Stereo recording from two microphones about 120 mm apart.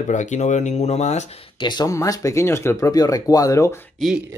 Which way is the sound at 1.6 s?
30° left (ahead or behind).